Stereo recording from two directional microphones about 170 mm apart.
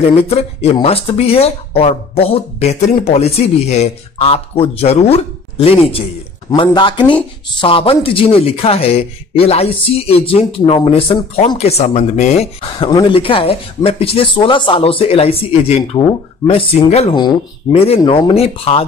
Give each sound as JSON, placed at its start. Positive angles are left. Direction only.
{"t": 0.2, "sound": "speech", "side_deg": 35}
{"t": 12.7, "sound": "speech", "side_deg": 30}